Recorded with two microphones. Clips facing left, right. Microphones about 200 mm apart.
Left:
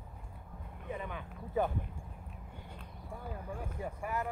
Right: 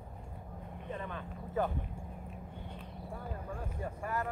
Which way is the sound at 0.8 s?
10° left (ahead or behind).